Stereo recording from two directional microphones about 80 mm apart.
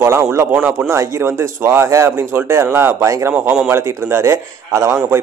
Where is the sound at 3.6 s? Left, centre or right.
Right.